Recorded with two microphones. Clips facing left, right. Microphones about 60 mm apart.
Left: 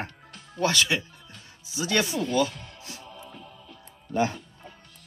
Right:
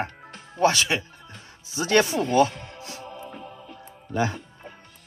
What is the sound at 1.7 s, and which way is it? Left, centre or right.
Music, right.